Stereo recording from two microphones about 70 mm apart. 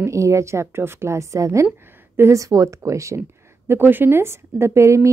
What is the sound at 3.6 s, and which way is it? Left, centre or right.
Speech, right.